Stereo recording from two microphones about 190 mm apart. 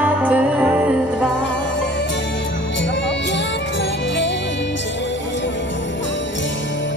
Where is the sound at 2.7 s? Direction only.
70° left (ahead or behind).